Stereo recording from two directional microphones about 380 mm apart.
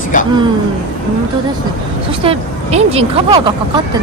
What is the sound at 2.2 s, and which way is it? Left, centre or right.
Speech, centre.